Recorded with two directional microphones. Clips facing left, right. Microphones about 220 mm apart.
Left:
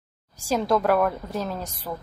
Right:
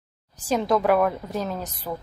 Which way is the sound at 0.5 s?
Centre (ahead or behind).